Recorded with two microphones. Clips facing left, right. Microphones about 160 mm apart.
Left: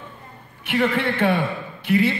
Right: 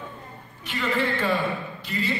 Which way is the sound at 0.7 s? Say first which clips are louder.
Left 5 dB; 60° left (ahead or behind).